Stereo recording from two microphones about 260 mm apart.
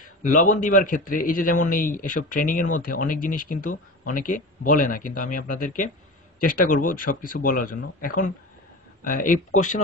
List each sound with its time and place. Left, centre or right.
0.0 s a man's voice: left